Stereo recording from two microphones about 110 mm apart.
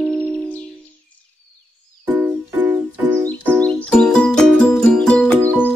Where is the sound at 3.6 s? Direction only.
10° left (ahead or behind).